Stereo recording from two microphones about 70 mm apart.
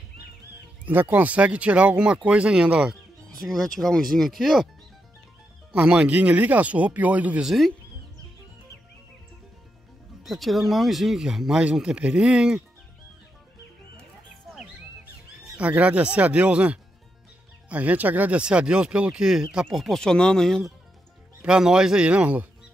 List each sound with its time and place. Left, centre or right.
0.8 s speech: right
3.3 s speech: centre
5.7 s speech: centre
7.4 s speech: centre
10.2 s speech: centre
15.5 s speech: centre
19.8 s speech: centre
21.5 s speech: centre